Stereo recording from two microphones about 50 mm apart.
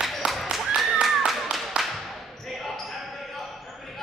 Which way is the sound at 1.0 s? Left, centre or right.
Centre.